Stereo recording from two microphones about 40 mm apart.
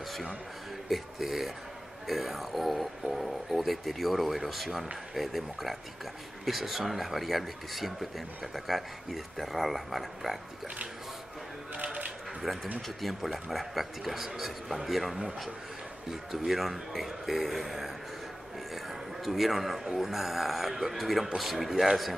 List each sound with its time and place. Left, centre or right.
0.8 s speech: centre
11.7 s typewriter: right
12.5 s speech: centre
19.2 s speech: centre